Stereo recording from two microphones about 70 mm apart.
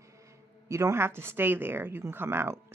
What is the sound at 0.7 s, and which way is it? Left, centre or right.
Speech, right.